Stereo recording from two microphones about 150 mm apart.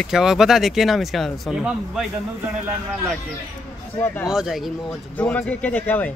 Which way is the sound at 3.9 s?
15° left (ahead or behind).